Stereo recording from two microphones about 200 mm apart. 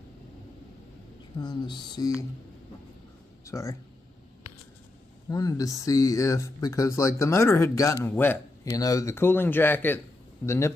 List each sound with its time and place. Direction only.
1.4 s a sound: 20° left (ahead or behind)
3.4 s speech: 15° left (ahead or behind)
5.3 s speech: 15° left (ahead or behind)